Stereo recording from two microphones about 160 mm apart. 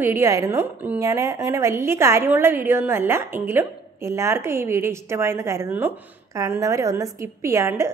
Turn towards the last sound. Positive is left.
turn(degrees=-15)  # may be behind; listen again after turning